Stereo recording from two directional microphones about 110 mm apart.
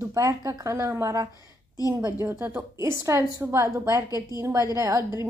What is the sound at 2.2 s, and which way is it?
A woman's voice, 20° right (ahead or behind).